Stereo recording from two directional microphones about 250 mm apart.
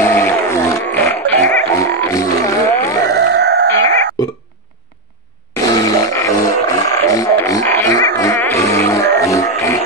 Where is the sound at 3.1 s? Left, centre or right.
Right.